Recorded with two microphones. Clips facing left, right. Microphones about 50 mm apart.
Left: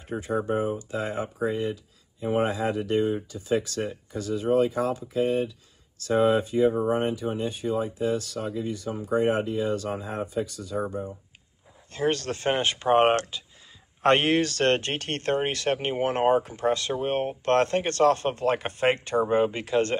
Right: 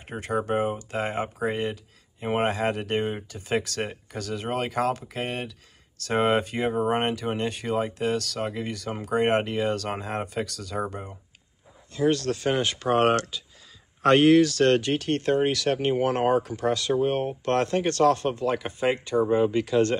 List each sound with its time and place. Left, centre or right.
0.0 s speech: right
10.9 s speech: right
11.9 s speech: left
19.2 s speech: left